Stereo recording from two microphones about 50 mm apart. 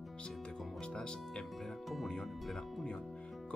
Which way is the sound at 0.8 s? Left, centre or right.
Centre.